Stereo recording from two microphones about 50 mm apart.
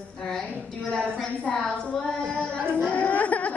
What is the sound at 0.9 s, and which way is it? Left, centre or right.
Speech, centre.